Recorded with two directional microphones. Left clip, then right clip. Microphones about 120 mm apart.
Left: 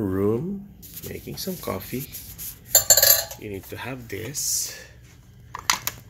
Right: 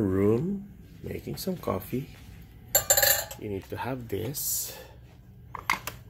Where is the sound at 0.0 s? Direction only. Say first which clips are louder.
Left 1 dB; 10° right (ahead or behind).